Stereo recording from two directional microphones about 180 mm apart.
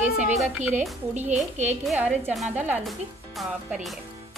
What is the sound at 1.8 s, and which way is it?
A woman's voice, 10° right (ahead or behind).